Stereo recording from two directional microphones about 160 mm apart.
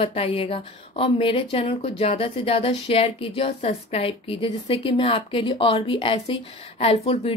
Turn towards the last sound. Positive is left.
turn(degrees=35)  # may be behind; listen again after turning